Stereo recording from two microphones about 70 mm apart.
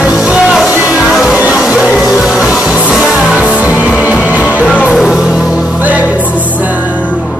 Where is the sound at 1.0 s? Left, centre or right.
Centre.